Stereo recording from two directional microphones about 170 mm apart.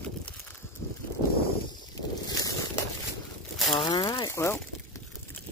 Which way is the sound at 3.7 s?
25° left (ahead or behind).